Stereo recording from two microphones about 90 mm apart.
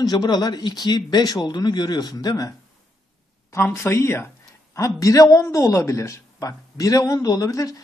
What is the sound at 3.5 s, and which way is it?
A man's voice, 30° left (ahead or behind).